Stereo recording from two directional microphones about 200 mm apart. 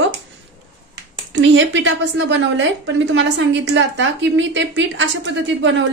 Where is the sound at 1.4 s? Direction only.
65° right (ahead or behind).